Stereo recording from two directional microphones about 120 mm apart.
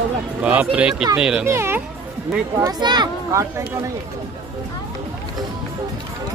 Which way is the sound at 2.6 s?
35° right (ahead or behind).